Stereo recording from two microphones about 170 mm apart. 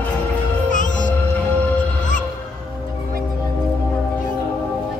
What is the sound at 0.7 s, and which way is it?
Music, 50° left (ahead or behind).